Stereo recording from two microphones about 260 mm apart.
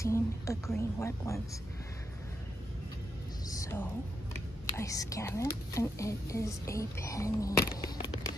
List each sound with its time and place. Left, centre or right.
0.0 s speech: centre
3.4 s music: centre
4.7 s speech: centre